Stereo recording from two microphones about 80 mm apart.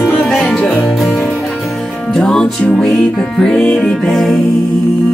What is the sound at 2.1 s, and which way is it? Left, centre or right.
Music, centre.